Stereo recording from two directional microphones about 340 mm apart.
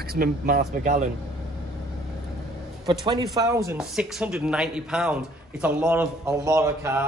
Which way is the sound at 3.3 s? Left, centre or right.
Centre.